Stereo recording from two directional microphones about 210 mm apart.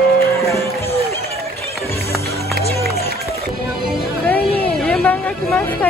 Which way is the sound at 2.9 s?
45° left (ahead or behind).